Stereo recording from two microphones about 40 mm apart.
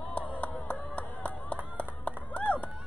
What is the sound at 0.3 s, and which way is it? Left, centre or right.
Clapping, left.